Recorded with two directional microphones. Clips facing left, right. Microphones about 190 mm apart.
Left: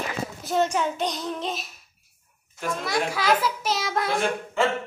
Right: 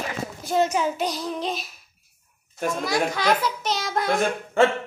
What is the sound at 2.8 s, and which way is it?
A child's voice, centre (ahead or behind).